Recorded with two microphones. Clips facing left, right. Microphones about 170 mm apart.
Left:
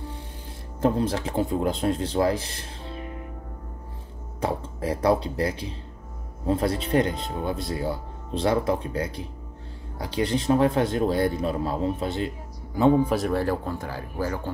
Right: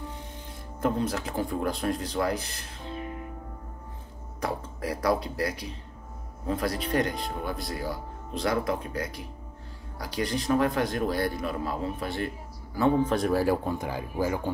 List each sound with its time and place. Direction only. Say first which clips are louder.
0.7 s speech: left 4 dB; 30° left (ahead or behind)
4.4 s a man's voice: left 4 dB; 25° left (ahead or behind)
13.1 s speech: even; centre (ahead or behind)